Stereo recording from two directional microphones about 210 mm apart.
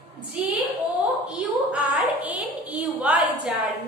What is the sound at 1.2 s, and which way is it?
A woman's voice, 5° right (ahead or behind).